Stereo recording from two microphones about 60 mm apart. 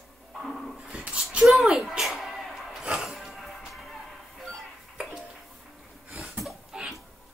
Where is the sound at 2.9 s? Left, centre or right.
Centre.